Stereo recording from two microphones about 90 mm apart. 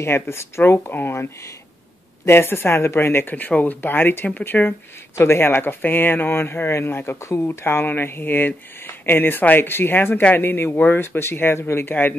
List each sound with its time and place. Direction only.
0.0 s speech: 30° left (ahead or behind)
2.2 s speech: 25° left (ahead or behind)